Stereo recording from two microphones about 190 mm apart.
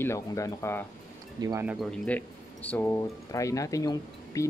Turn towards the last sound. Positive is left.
turn(degrees=15)  # may be behind; listen again after turning